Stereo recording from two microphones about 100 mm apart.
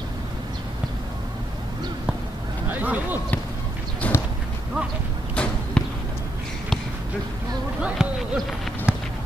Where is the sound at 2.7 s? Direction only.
15° right (ahead or behind).